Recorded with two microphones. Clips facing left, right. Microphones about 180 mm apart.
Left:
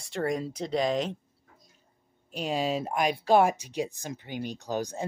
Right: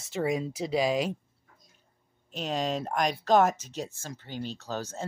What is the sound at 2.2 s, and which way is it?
Speech, 10° left (ahead or behind).